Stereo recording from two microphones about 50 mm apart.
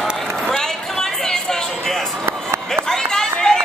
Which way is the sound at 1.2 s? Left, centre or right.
Centre.